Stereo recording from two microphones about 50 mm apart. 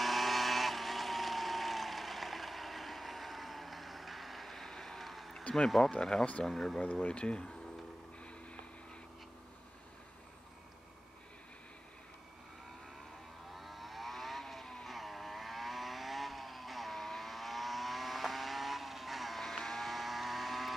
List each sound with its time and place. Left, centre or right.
0.0 s vehicle: centre
5.9 s speech: centre
6.8 s speech: left
13.5 s vehicle: centre